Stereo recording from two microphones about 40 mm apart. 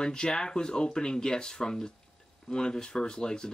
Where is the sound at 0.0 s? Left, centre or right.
Left.